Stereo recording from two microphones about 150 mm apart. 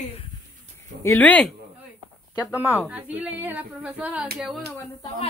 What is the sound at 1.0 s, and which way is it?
Speech, 10° left (ahead or behind).